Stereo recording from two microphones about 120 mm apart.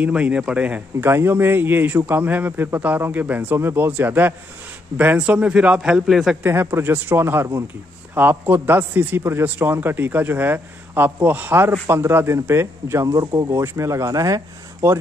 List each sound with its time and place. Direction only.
0.0 s speech: 10° right (ahead or behind)
6.4 s a man's voice: 20° right (ahead or behind)